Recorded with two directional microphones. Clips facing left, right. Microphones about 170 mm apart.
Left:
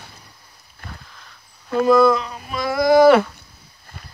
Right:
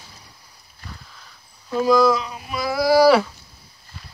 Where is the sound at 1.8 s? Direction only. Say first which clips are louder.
Left 2 dB; centre (ahead or behind).